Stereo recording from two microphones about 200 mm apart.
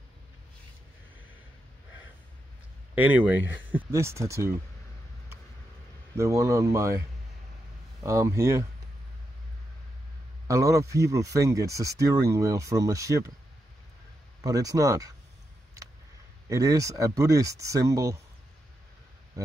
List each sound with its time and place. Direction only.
2.9 s speech: 10° right (ahead or behind)
6.1 s speech: 15° right (ahead or behind)
8.0 s speech: 15° right (ahead or behind)
10.5 s speech: 15° right (ahead or behind)
14.4 s speech: 20° right (ahead or behind)
16.4 s speech: 15° right (ahead or behind)